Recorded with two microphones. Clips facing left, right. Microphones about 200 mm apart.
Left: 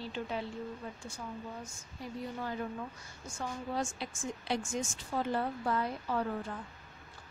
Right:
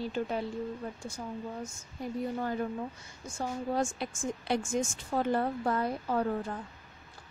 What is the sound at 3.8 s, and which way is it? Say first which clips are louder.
Speech: right 5 dB; 50° right (ahead or behind).